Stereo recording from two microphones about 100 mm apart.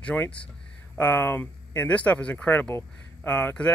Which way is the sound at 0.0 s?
15° left (ahead or behind).